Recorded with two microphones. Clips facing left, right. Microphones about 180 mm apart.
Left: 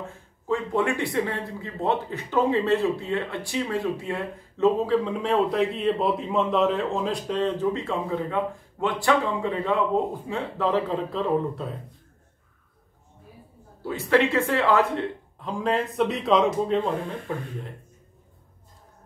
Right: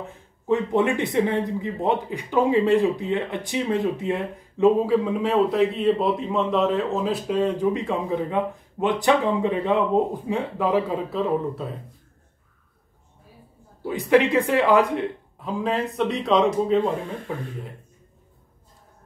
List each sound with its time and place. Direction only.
0.0 s speech: 20° right (ahead or behind); by 11.7 s centre (ahead or behind)
13.8 s speech: 15° right (ahead or behind)
15.4 s speech: 5° right (ahead or behind)